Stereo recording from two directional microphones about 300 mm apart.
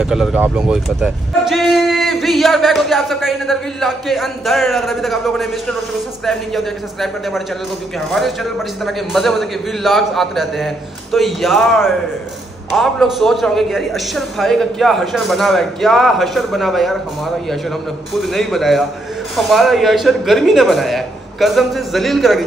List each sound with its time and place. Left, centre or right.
0.0 s speech: centre
8.8 s speech: centre
18.2 s speech: centre